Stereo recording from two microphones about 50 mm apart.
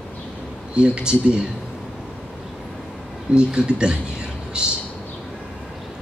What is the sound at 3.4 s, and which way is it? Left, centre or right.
A man's voice, centre.